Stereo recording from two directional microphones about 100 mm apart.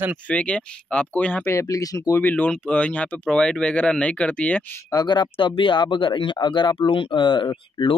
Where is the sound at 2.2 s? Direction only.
15° left (ahead or behind).